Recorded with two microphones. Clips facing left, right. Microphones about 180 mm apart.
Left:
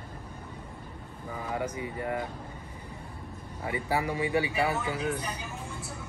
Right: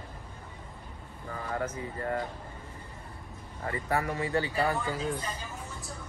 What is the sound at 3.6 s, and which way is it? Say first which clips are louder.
A man's voice: left 1 dB; 15° left (ahead or behind).